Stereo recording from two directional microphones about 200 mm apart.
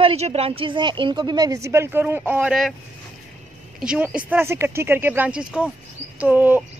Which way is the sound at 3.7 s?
5° right (ahead or behind).